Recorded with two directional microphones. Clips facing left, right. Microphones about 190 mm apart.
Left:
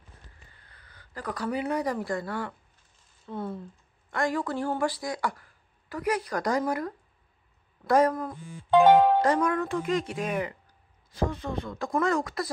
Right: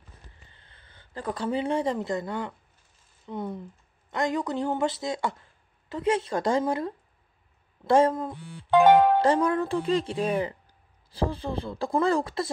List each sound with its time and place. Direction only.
0.5 s speech: 25° right (ahead or behind)